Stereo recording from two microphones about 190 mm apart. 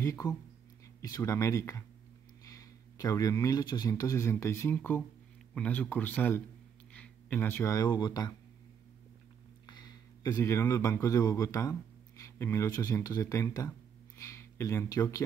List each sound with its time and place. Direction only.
0.0 s speech: 15° left (ahead or behind)
9.7 s speech: 20° left (ahead or behind)